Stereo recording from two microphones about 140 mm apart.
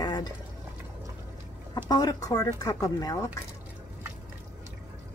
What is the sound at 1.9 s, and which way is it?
Speech, 25° left (ahead or behind).